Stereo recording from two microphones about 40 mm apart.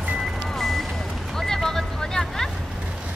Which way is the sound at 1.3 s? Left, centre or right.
Centre.